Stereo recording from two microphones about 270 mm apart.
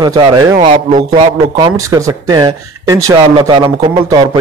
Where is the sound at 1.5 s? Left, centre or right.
Centre.